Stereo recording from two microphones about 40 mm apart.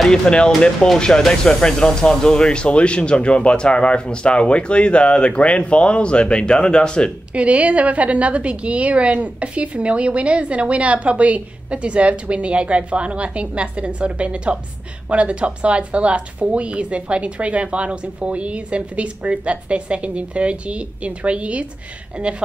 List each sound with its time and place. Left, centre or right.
0.1 s speech: left
7.3 s a woman's voice: right